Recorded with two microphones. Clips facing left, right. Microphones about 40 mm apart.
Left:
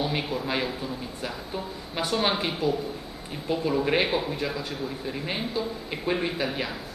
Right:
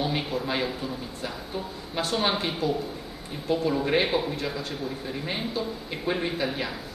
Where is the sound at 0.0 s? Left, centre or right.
Centre.